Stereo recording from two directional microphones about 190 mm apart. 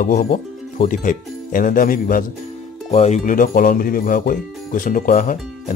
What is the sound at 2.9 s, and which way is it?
Speech, 35° left (ahead or behind).